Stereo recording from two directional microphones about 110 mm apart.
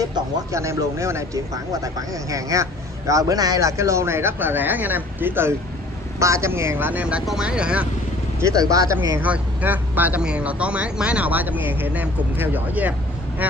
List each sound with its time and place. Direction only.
0.0 s speech: 30° right (ahead or behind); by 7.9 s 10° right (ahead or behind)
8.4 s speech: 30° right (ahead or behind)
9.2 s speech: 15° right (ahead or behind)